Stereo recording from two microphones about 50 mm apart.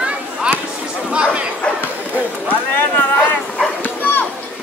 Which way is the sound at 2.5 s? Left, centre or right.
Left.